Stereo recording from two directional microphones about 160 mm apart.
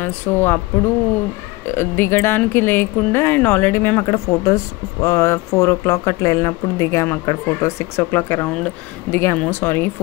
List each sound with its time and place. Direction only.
0.0 s speech: 10° left (ahead or behind)
1.7 s speech: 15° left (ahead or behind)